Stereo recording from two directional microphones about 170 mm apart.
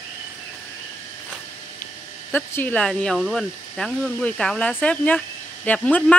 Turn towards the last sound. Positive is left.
turn(degrees=10)  # may be behind; listen again after turning